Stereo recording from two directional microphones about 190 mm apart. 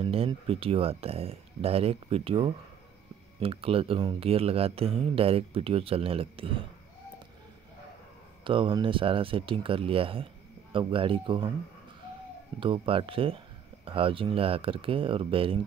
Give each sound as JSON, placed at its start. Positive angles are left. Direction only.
{"t": 0.0, "sound": "speech", "side_deg": -30}
{"t": 8.5, "sound": "speech", "side_deg": -25}
{"t": 12.5, "sound": "speech", "side_deg": -25}